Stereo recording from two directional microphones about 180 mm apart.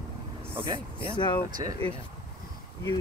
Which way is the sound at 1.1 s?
25° left (ahead or behind).